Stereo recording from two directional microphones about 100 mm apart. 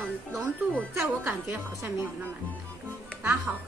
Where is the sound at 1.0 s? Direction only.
20° right (ahead or behind).